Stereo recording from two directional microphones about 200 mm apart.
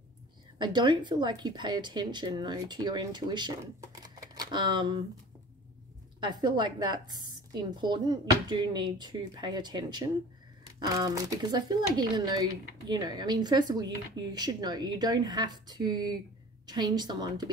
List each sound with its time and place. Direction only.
0.6 s a woman's voice: 20° right (ahead or behind)
6.2 s a woman's voice: 20° right (ahead or behind)